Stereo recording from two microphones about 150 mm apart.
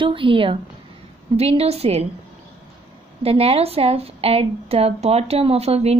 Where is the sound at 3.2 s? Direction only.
40° right (ahead or behind).